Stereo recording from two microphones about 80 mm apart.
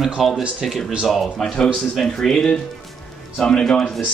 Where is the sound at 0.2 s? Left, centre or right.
Centre.